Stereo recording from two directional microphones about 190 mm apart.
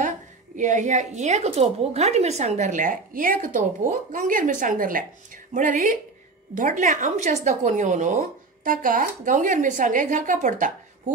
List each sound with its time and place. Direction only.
0.6 s a woman's voice: 40° right (ahead or behind)